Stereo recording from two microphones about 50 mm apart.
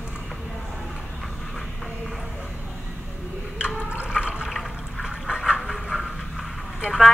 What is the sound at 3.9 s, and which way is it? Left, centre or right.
Water, right.